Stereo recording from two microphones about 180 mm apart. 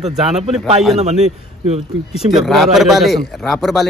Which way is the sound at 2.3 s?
Centre (ahead or behind).